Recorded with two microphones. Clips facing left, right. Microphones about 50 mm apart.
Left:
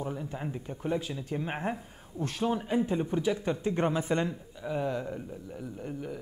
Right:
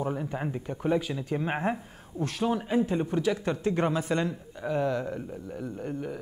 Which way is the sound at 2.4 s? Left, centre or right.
Centre.